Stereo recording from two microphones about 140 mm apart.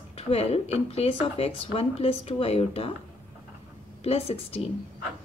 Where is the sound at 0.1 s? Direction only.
45° left (ahead or behind).